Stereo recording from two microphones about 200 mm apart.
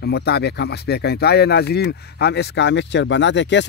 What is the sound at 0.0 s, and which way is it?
Speech, 55° left (ahead or behind).